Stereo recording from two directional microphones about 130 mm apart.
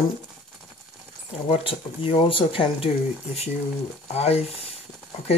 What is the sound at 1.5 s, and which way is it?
Speech, 45° left (ahead or behind).